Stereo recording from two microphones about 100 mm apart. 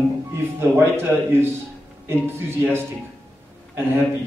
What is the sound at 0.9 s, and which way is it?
A man's voice, 25° right (ahead or behind).